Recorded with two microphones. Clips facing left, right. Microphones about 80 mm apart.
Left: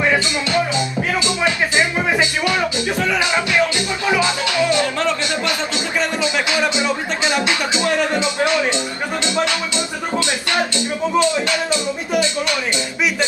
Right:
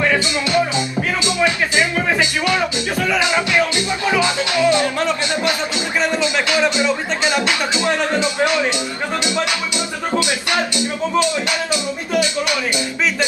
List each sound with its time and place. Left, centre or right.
0.5 s music: right
1.4 s music: left
4.6 s music: right
6.2 s music: left
10.1 s music: centre